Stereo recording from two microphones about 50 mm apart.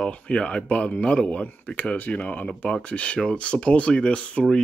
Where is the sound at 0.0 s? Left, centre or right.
Left.